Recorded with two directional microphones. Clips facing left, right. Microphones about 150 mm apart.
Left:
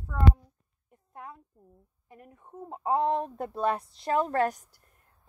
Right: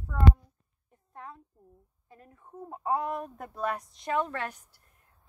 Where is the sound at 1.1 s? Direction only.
10° left (ahead or behind).